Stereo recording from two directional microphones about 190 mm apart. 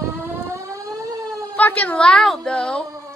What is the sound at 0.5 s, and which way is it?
Siren, 15° right (ahead or behind).